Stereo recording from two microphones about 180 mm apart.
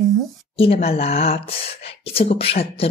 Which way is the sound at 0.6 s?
35° left (ahead or behind).